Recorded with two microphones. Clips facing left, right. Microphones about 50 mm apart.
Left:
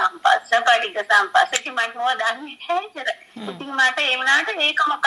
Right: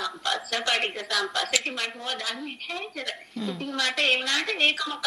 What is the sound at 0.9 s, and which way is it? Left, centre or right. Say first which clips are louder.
Speech: left 12 dB; left.